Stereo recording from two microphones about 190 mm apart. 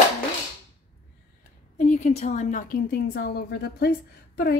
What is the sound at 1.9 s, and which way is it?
A woman's voice, 35° left (ahead or behind).